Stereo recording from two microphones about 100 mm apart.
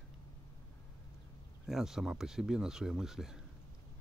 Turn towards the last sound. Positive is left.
turn(degrees=-5)  # may be behind; listen again after turning